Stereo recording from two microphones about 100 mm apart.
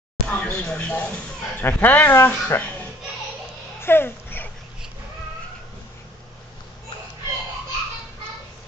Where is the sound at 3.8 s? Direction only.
20° left (ahead or behind).